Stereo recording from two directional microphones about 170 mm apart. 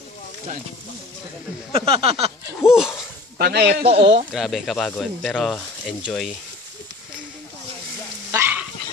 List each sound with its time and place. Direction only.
1.8 s speech: 35° right (ahead or behind)
2.6 s speech: 5° right (ahead or behind)
3.3 s speech: 75° right (ahead or behind)
3.8 s speech: 35° right (ahead or behind)
4.3 s speech: centre (ahead or behind)
8.3 s a sound: 15° right (ahead or behind)